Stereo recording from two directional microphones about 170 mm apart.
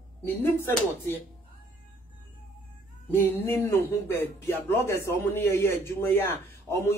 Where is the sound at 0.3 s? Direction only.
10° left (ahead or behind).